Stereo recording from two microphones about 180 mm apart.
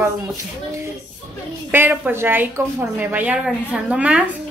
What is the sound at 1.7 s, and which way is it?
A woman's voice, 10° right (ahead or behind).